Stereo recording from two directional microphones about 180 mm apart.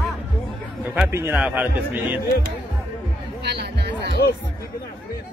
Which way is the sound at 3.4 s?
65° right (ahead or behind).